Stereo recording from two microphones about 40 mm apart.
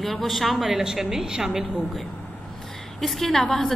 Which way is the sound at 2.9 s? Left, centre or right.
Centre.